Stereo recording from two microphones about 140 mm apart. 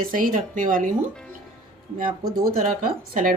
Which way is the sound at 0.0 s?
80° right.